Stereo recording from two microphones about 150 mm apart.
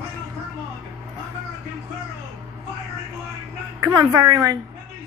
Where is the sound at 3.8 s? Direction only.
25° right (ahead or behind).